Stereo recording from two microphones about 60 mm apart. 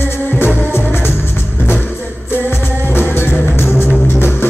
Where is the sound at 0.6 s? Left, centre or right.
Left.